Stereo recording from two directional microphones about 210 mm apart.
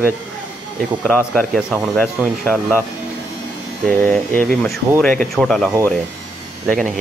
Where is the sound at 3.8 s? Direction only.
5° left (ahead or behind).